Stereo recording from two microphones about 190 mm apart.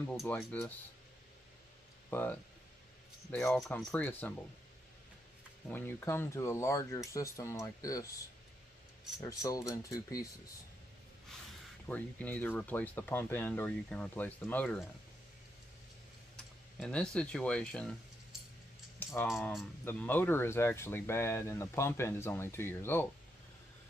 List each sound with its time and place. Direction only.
0.0 s speech: 5° left (ahead or behind)
2.0 s speech: 10° left (ahead or behind)
5.7 s speech: 10° left (ahead or behind)
9.2 s speech: 20° left (ahead or behind)
11.9 s speech: 10° left (ahead or behind)
16.8 s speech: 5° left (ahead or behind)
19.2 s speech: centre (ahead or behind)
19.8 s speech: 10° left (ahead or behind)